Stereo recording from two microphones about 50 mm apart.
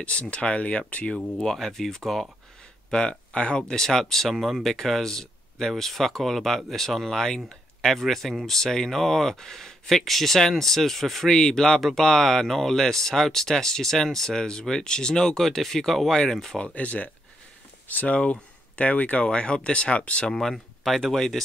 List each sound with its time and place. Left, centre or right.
0.0 s speech: left
1.1 s speech: centre
2.9 s speech: centre
16.5 s speech: left
18.1 s speech: left
20.3 s speech: centre